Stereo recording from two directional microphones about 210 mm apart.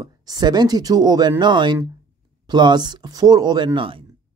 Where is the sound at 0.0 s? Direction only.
20° right (ahead or behind).